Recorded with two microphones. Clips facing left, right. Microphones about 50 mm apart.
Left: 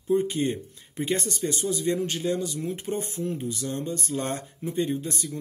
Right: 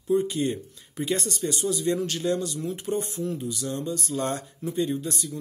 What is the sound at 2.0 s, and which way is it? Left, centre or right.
Speech, centre.